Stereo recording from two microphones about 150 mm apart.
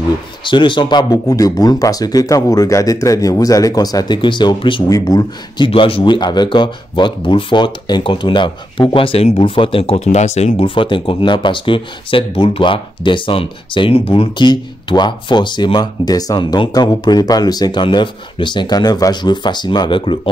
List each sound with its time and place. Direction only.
0.4 s speech: 30° left (ahead or behind)
5.7 s speech: 35° left (ahead or behind)